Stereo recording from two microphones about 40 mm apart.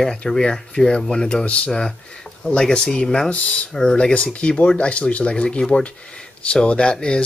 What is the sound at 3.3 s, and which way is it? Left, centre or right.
Speech, left.